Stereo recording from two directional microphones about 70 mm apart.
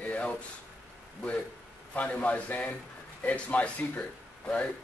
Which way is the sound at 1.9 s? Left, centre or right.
Left.